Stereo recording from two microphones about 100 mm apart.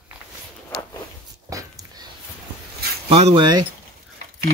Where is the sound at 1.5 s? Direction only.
35° right (ahead or behind).